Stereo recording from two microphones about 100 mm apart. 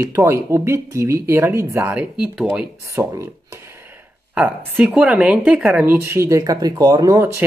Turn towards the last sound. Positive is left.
turn(degrees=-35)  # may be behind; listen again after turning